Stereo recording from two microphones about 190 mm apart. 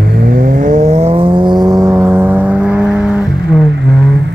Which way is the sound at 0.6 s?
35° right (ahead or behind).